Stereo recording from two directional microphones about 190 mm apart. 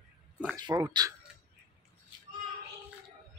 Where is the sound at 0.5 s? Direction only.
20° right (ahead or behind).